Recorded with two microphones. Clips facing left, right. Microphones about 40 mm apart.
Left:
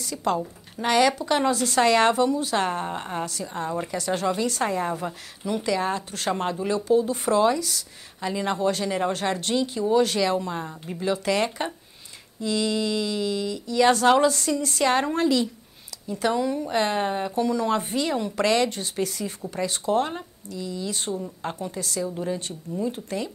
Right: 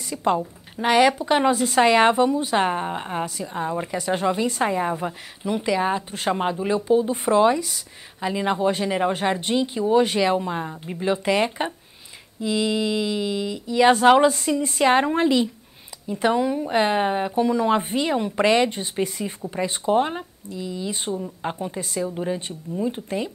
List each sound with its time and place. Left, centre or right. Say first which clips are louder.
0.0 s a woman's voice: right 3 dB; right